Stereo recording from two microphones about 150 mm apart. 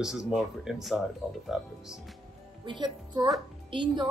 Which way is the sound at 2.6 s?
30° right (ahead or behind).